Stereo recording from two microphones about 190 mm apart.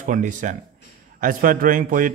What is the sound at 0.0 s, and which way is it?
A man's voice, 40° right (ahead or behind).